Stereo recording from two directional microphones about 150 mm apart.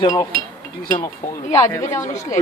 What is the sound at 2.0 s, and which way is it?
Speech, 50° left (ahead or behind).